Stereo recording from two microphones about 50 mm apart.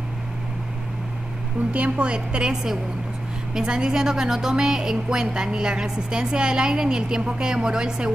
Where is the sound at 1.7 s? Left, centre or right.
Right.